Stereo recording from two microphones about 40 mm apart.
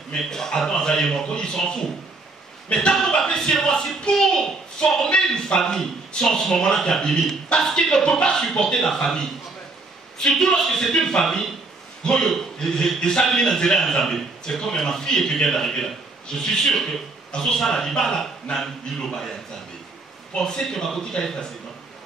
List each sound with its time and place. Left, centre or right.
0.2 s a man's voice: centre
5.1 s a man's voice: left
5.6 s a man's voice: centre
10.3 s a man's voice: centre
20.3 s a man's voice: centre